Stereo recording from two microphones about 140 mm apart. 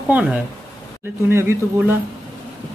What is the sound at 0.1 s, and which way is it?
Speech, 10° right (ahead or behind).